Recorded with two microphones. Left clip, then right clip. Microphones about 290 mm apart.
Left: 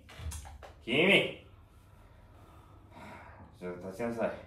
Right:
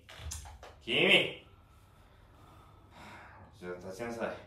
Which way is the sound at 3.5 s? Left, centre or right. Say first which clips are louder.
Left 3 dB; centre.